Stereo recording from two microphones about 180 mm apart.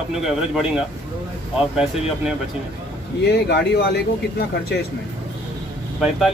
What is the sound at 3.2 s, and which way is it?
Speech, 65° left (ahead or behind).